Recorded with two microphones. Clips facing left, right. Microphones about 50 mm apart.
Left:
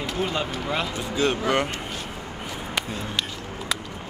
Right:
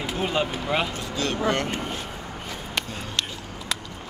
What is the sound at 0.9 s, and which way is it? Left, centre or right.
Speech, left.